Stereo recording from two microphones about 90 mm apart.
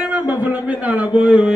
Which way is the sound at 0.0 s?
15° right (ahead or behind).